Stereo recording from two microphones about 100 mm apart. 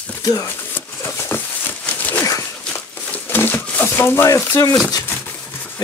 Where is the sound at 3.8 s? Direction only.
25° left (ahead or behind).